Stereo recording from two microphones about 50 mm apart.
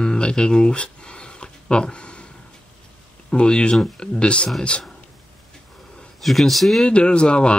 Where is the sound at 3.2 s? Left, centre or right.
Centre.